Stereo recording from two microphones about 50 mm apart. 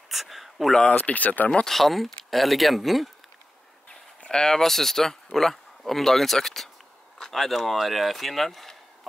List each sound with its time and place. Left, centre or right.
0.1 s speech: centre
0.8 s speech: left
1.5 s speech: centre
4.2 s speech: centre